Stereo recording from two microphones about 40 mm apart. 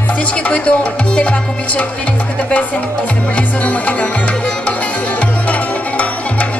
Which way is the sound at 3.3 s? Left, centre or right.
Left.